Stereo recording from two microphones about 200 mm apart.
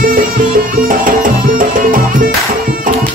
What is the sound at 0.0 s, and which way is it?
Music, 45° right (ahead or behind).